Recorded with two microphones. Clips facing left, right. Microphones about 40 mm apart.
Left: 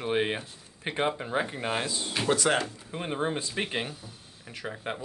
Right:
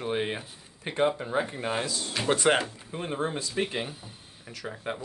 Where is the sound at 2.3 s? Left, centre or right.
Right.